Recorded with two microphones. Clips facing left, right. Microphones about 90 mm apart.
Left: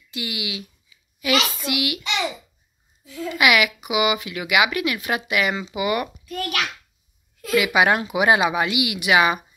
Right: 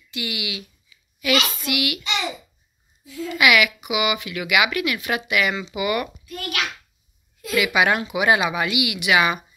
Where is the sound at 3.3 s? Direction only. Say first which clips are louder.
Even; 30° left (ahead or behind).